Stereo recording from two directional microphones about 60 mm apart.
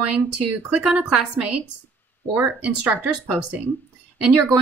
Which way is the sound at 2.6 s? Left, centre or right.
Right.